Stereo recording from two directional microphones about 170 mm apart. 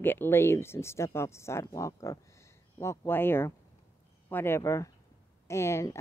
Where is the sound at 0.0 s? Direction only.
10° left (ahead or behind).